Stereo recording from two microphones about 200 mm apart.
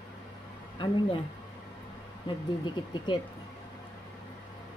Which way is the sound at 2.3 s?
25° left (ahead or behind).